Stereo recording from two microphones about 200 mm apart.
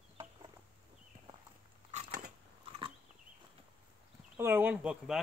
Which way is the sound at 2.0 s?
50° right (ahead or behind).